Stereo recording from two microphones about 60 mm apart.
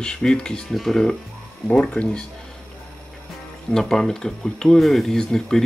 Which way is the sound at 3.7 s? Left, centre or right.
Centre.